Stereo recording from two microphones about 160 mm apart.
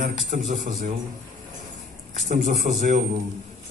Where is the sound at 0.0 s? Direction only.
55° right (ahead or behind).